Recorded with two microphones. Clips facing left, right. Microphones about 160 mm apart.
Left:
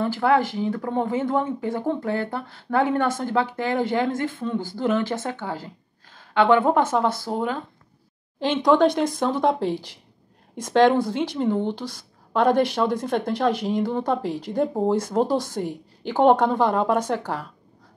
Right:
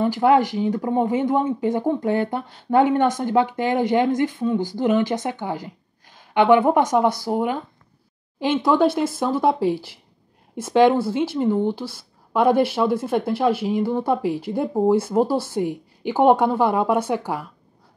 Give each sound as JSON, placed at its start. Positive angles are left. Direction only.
{"t": 0.0, "sound": "speech", "side_deg": -20}